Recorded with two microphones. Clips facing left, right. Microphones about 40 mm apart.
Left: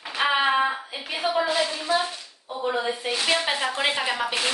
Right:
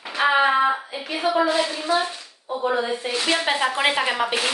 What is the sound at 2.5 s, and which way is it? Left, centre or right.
Speech, right.